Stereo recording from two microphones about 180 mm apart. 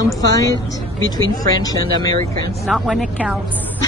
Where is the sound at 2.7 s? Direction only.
Centre (ahead or behind).